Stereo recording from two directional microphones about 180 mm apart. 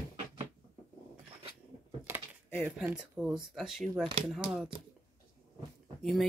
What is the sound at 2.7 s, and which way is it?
Speech, 5° right (ahead or behind).